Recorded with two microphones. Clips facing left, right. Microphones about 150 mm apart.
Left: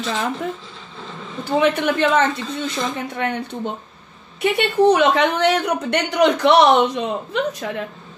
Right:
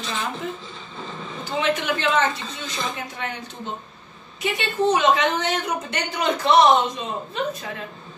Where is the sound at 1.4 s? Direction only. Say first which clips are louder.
Left 6 dB; 55° left (ahead or behind).